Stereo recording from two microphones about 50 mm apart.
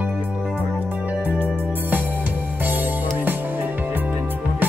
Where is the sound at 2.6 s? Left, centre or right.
Right.